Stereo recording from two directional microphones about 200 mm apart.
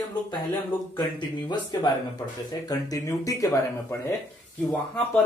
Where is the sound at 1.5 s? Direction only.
20° left (ahead or behind).